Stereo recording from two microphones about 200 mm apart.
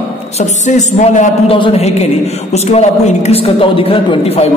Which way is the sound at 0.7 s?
35° left (ahead or behind).